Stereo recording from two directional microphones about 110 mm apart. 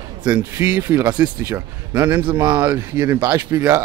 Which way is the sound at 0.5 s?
20° right (ahead or behind).